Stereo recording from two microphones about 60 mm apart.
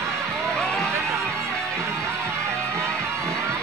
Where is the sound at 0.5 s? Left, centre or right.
Centre.